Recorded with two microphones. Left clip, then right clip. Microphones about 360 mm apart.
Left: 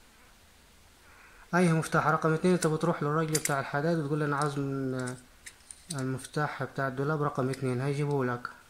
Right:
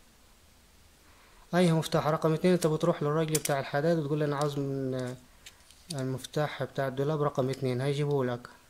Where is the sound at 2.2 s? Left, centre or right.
Right.